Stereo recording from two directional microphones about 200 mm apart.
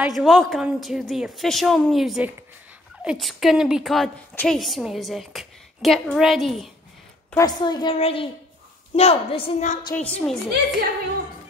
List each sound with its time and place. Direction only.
0.0 s a woman's voice: centre (ahead or behind)
7.2 s a woman's voice: 15° left (ahead or behind); by 9.9 s 40° left (ahead or behind)
9.9 s a woman's voice: 5° left (ahead or behind)